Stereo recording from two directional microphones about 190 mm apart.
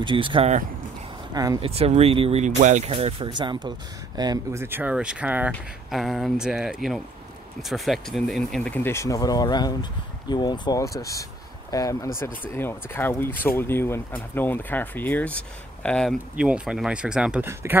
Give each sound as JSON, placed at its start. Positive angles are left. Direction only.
{"t": 0.0, "sound": "speech", "side_deg": -25}
{"t": 1.3, "sound": "speech", "side_deg": -20}
{"t": 1.6, "sound": "speech", "side_deg": -30}